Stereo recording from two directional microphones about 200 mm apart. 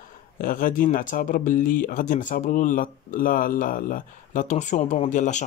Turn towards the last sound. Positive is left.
turn(degrees=35)  # may be behind; listen again after turning